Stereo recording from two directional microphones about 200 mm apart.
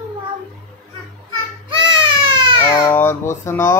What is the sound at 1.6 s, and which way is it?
Baby cry, 25° right (ahead or behind).